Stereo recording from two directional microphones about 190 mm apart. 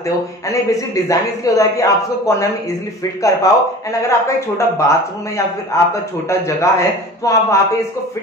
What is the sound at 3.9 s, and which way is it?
A man's voice, 15° left (ahead or behind).